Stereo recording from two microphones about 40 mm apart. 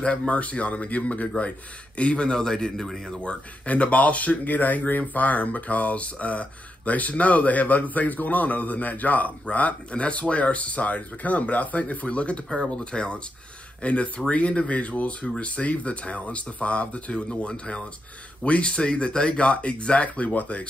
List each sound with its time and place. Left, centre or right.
0.3 s a man's voice: left; by 3.2 s centre
3.2 s a man's voice: left